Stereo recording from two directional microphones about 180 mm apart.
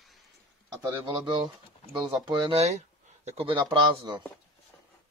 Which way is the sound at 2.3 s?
25° right (ahead or behind).